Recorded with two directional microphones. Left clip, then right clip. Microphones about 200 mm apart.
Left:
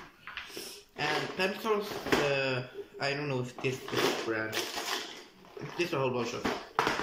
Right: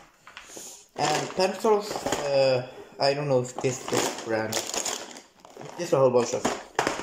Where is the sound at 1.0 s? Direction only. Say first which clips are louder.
Right 6 dB; 25° right (ahead or behind).